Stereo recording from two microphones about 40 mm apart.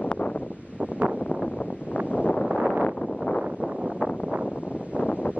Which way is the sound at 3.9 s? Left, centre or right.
Left.